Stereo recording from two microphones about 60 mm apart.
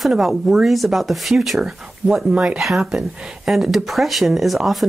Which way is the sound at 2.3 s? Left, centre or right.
Centre.